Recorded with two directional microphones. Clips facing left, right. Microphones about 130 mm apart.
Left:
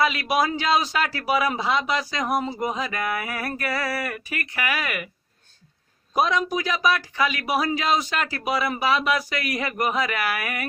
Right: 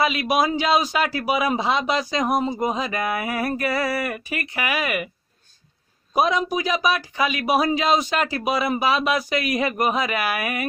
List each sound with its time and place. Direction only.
0.0 s a man's voice: 20° right (ahead or behind)
6.1 s a man's voice: 15° right (ahead or behind)